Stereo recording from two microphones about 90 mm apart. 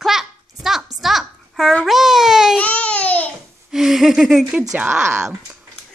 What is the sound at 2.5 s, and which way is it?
Babbling, 15° left (ahead or behind).